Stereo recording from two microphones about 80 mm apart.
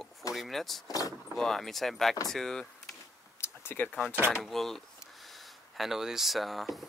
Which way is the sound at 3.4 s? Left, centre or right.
Left.